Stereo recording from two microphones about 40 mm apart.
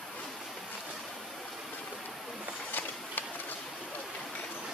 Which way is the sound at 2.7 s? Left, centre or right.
Left.